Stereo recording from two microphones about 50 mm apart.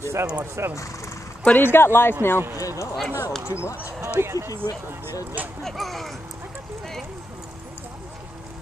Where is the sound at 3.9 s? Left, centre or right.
Right.